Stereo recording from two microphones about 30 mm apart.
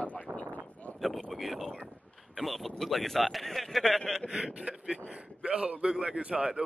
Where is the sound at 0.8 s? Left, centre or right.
Left.